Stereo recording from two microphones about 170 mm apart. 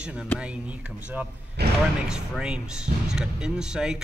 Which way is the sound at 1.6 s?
75° right (ahead or behind).